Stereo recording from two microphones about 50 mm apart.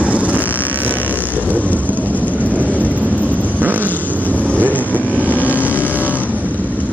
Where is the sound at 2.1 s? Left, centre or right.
Left.